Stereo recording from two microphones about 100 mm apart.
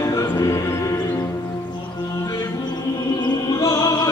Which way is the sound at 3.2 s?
35° left (ahead or behind).